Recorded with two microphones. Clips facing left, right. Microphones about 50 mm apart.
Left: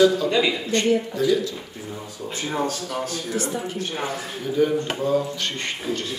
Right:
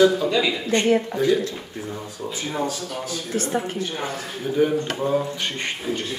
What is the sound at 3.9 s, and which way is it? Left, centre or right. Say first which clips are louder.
Speech: left 1 dB; centre.